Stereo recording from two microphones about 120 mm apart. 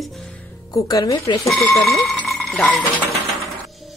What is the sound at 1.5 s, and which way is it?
Speech, centre (ahead or behind).